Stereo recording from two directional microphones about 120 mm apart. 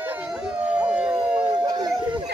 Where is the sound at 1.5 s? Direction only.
40° right (ahead or behind).